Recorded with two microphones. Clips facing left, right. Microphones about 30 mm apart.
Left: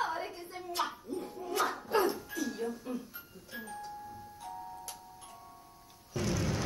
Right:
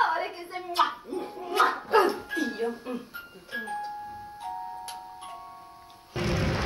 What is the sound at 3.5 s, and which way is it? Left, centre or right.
Music, right.